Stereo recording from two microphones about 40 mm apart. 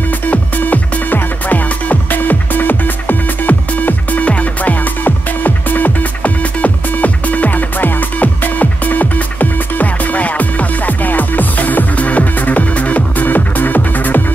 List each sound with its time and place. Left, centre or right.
0.3 s music: left
4.2 s music: left
5.0 s music: left